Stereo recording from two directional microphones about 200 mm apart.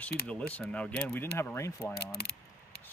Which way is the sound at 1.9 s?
55° left (ahead or behind).